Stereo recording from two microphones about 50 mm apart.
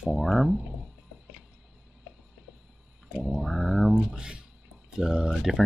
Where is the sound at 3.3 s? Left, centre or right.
Centre.